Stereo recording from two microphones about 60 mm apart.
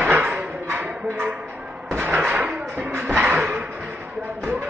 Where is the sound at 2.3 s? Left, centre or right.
Right.